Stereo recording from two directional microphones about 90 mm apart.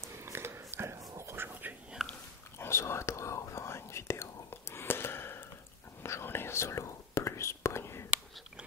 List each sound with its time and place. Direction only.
0.0 s a sound: 30° right (ahead or behind)
2.0 s pig: 5° right (ahead or behind)
2.6 s whispering: 30° left (ahead or behind)